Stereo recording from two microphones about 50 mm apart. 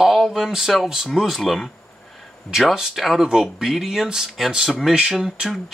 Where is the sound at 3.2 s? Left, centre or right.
Centre.